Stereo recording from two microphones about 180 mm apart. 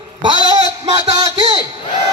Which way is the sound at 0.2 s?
25° right (ahead or behind).